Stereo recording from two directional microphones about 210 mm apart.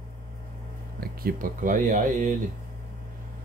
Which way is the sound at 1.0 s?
45° right (ahead or behind).